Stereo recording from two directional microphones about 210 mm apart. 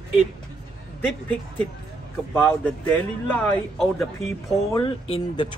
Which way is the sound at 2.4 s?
10° left (ahead or behind).